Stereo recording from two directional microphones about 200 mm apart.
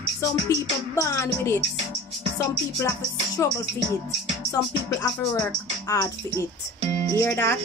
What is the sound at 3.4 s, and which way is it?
Music, 10° left (ahead or behind).